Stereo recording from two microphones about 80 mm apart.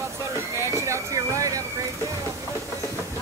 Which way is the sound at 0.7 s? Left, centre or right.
Right.